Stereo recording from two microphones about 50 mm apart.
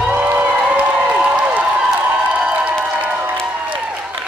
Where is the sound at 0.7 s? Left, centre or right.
Right.